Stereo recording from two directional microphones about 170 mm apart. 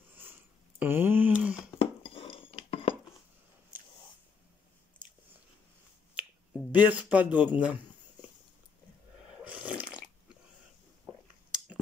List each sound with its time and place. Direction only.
0.7 s a sound: 10° right (ahead or behind)
1.8 s dishes: 35° left (ahead or behind)
6.1 s finger snapping: 10° right (ahead or behind)
9.4 s drip: 10° right (ahead or behind)